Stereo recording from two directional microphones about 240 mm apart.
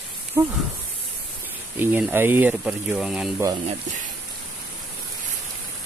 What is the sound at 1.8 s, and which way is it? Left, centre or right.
Speech, centre.